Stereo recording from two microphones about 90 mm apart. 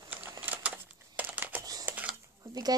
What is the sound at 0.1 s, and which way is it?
Crumpling, 15° right (ahead or behind).